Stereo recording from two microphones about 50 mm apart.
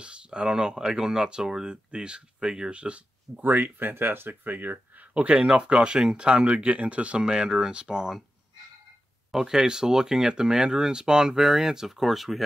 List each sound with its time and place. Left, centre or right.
0.0 s speech: centre
3.3 s speech: right
5.3 s speech: right
9.3 s speech: centre